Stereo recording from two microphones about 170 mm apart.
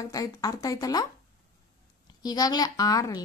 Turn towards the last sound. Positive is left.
turn(degrees=20)  # may be behind; listen again after turning